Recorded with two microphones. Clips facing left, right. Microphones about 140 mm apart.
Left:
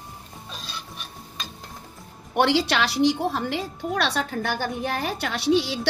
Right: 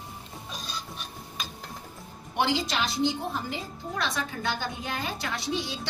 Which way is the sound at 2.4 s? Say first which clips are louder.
Left 6 dB; 70° left (ahead or behind).